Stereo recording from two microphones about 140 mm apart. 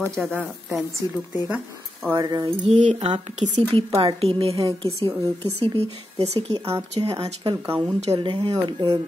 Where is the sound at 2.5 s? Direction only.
55° right (ahead or behind).